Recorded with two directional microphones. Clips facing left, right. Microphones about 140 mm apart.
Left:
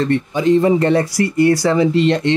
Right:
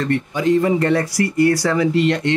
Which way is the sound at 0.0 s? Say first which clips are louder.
Left 3 dB; 25° left (ahead or behind).